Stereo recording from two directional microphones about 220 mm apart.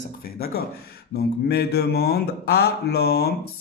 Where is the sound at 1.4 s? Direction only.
45° left (ahead or behind).